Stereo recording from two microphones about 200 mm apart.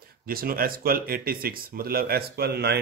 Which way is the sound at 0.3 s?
45° right (ahead or behind).